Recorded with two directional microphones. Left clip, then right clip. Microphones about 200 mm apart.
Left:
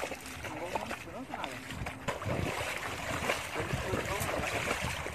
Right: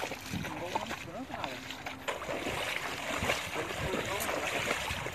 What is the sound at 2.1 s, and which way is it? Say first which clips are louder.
Boat: even; 5° right (ahead or behind).